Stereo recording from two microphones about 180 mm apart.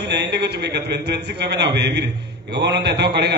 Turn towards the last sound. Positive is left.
turn(degrees=-65)  # may be behind; listen again after turning